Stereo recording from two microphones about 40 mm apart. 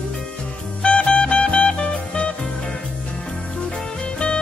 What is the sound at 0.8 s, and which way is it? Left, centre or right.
Music, left.